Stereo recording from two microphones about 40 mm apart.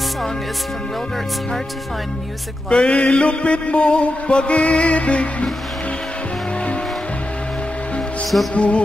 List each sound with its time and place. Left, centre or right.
2.7 s chant: left
8.5 s chant: left